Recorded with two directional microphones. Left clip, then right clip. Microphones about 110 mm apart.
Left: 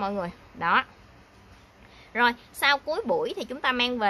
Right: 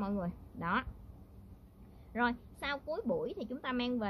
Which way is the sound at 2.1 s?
35° left (ahead or behind).